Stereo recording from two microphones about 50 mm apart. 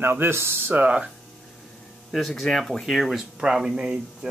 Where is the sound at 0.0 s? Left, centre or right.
Right.